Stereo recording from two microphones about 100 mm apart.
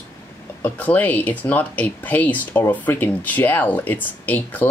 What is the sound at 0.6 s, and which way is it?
Speech, 15° left (ahead or behind).